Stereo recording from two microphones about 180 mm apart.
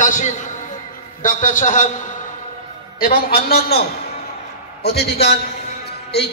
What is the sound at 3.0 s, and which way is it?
Speech, 55° left (ahead or behind).